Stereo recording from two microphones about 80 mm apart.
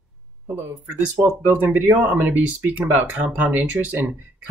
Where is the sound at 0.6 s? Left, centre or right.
Right.